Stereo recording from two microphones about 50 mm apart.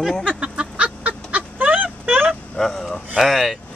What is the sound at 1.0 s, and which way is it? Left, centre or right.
Fowl, right.